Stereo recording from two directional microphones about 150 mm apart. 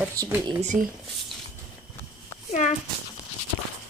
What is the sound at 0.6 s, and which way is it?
Speech, 55° right (ahead or behind).